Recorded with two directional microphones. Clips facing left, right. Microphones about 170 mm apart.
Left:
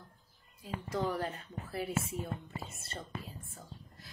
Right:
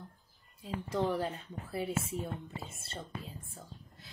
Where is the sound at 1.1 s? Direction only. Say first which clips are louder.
Right 2 dB; 25° right (ahead or behind).